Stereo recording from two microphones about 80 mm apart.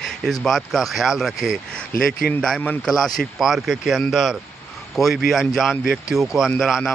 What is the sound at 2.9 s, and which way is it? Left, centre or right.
A man's voice, centre.